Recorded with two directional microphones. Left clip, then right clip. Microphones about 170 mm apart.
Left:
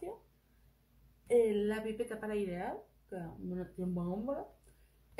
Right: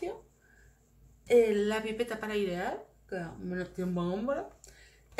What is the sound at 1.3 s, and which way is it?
Speech, 15° right (ahead or behind).